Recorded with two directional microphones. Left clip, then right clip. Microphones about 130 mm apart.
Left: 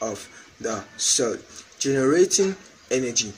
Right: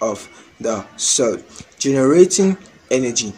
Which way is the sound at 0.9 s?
15° right (ahead or behind).